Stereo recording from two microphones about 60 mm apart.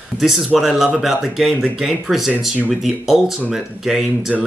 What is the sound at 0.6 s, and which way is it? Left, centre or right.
Speech, centre.